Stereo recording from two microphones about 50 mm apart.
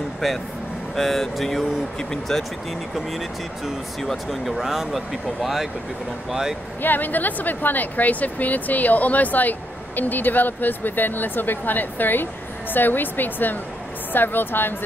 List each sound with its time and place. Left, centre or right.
0.9 s speech: centre
6.8 s a woman's voice: left